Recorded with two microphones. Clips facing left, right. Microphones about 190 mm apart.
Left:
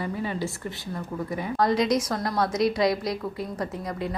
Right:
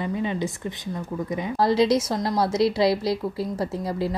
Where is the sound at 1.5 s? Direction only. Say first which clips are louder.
Right 3 dB; 30° right (ahead or behind).